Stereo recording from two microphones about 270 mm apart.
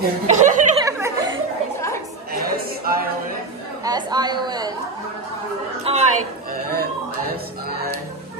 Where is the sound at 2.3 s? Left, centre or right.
Right.